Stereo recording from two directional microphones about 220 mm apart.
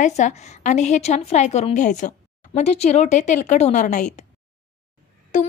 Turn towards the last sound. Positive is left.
turn(degrees=35)  # may be behind; listen again after turning